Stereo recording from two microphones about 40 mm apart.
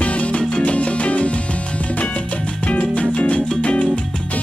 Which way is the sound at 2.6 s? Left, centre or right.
Left.